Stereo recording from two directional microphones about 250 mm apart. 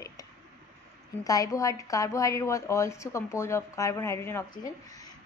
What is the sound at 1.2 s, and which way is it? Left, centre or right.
Speech, centre.